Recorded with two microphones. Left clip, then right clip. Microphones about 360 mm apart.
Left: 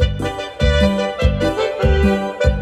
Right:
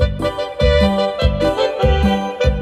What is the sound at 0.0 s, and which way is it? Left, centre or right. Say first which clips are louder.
Music: right 3 dB; centre.